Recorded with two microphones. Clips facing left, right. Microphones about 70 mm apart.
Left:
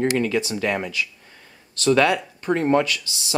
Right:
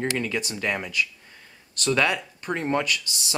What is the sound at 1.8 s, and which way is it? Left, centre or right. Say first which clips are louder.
Speech: left 5 dB; left.